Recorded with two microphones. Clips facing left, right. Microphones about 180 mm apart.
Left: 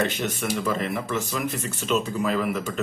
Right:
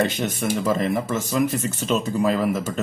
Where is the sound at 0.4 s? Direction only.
40° right (ahead or behind).